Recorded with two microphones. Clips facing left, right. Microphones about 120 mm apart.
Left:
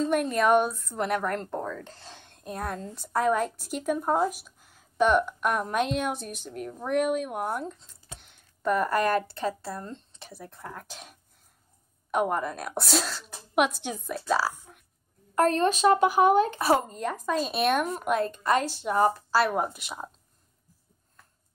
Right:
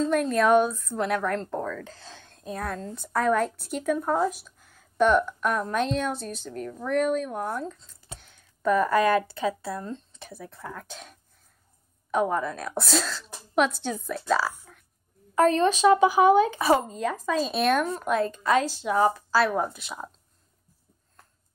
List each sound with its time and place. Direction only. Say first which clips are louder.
0.0 s a woman's voice: right 2 dB; 5° left (ahead or behind)
1.6 s speech: right 2 dB; 20° left (ahead or behind)
2.3 s speech: right 1 dB; 5° left (ahead or behind)
3.9 s a woman's voice: right 1 dB; 15° left (ahead or behind)
9.5 s a woman's voice: right 3 dB; centre (ahead or behind)